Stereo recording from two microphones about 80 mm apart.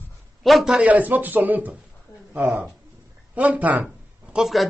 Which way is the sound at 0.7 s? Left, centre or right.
Centre.